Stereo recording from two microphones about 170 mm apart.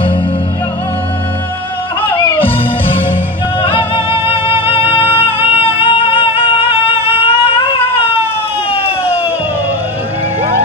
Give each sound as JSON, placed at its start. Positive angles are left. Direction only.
{"t": 2.1, "sound": "music", "side_deg": 30}
{"t": 4.8, "sound": "music", "side_deg": -10}
{"t": 5.2, "sound": "music", "side_deg": 35}
{"t": 8.7, "sound": "siren", "side_deg": 35}